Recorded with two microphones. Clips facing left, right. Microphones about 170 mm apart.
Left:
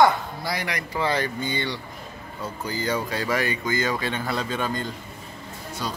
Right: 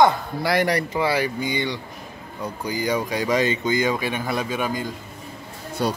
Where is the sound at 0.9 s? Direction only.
10° right (ahead or behind).